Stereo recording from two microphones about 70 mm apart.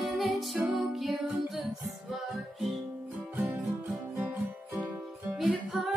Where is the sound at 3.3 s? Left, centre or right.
Right.